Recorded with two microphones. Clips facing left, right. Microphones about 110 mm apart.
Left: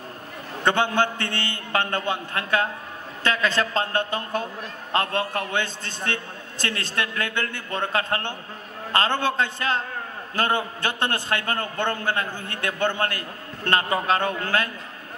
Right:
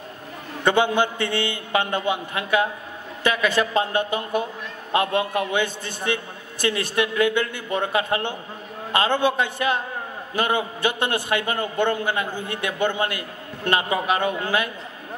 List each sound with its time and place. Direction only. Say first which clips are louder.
0.7 s a man's voice: right 2 dB; 15° right (ahead or behind)